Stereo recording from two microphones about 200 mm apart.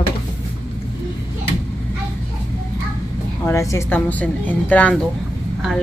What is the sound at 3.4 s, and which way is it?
Speech, 15° left (ahead or behind).